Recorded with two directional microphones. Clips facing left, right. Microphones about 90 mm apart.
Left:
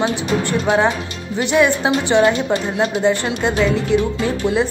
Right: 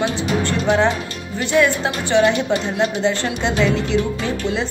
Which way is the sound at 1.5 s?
15° left (ahead or behind).